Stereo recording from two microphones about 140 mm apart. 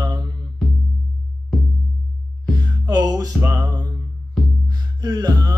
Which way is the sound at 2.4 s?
30° right (ahead or behind).